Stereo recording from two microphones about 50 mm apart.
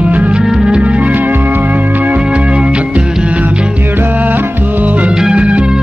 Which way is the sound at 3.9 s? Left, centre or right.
Right.